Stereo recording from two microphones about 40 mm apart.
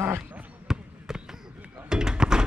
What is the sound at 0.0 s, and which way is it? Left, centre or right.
Basketball bounce, right.